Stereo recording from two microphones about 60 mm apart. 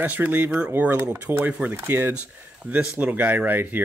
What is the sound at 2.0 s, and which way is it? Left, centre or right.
Speech, right.